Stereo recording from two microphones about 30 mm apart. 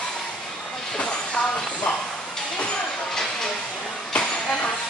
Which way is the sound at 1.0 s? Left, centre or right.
Left.